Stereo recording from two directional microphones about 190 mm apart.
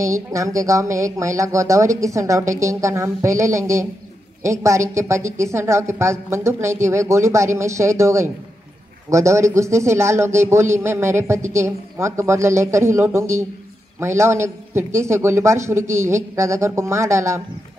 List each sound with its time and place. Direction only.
0.0 s a man's voice: 15° right (ahead or behind)